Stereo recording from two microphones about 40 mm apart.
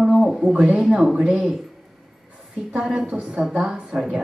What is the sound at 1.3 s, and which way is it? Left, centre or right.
Speech, centre.